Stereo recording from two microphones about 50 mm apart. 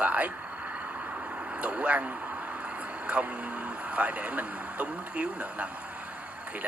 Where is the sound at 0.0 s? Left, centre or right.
Right.